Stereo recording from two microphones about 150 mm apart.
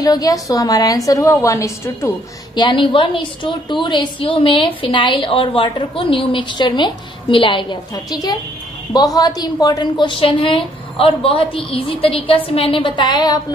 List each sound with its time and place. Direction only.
0.0 s a woman's voice: 25° left (ahead or behind)
2.5 s a woman's voice: 30° left (ahead or behind)